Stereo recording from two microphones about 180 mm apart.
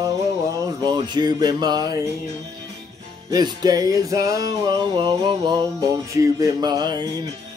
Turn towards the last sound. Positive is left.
turn(degrees=-25)  # may be behind; listen again after turning